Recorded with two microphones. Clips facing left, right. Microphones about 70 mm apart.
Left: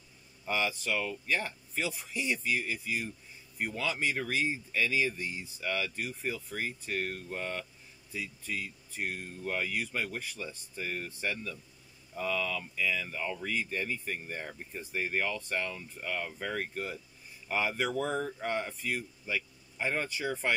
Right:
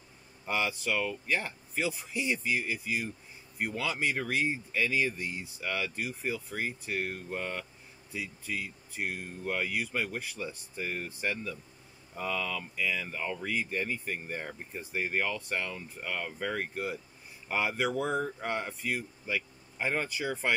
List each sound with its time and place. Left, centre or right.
0.5 s speech: centre